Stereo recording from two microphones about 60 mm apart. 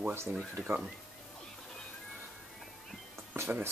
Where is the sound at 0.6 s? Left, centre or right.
Centre.